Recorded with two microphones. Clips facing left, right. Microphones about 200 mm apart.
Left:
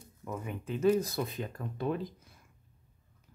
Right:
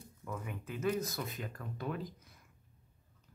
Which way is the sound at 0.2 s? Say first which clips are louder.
Left 4 dB; 20° left (ahead or behind).